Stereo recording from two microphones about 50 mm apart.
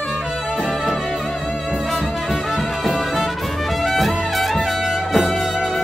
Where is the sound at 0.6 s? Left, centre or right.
Centre.